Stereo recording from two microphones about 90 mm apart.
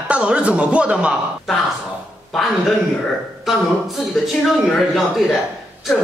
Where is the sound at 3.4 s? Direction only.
Centre (ahead or behind).